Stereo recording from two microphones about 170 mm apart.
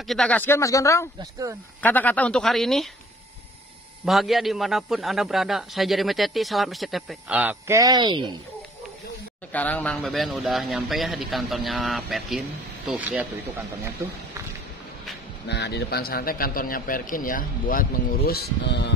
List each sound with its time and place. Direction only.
0.1 s a man's voice: 5° left (ahead or behind)
4.0 s a man's voice: centre (ahead or behind); by 8.4 s 25° right (ahead or behind)
9.5 s a man's voice: 10° left (ahead or behind); by 13.3 s 10° right (ahead or behind)
15.4 s a man's voice: 80° left